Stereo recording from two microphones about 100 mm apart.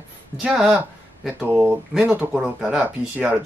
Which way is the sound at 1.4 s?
15° right (ahead or behind).